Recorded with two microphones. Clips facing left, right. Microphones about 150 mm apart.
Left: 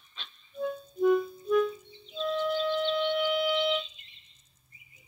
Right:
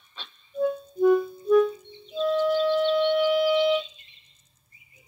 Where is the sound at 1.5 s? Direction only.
35° right (ahead or behind).